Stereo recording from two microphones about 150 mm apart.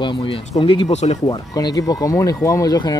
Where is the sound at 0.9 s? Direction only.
50° left (ahead or behind).